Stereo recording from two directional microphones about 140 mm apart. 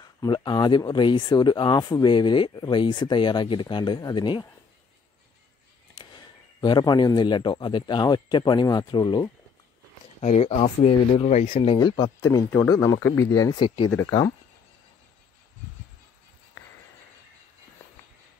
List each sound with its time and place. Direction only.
0.0 s speech: 30° left (ahead or behind)
5.9 s a man's voice: 35° left (ahead or behind)
10.2 s speech: 50° left (ahead or behind)
11.5 s speech: 35° left (ahead or behind)
13.6 s speech: 40° left (ahead or behind)